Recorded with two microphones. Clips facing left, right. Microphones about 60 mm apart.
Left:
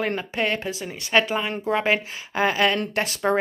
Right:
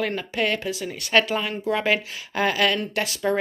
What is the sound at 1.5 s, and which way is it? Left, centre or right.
A woman's voice, left.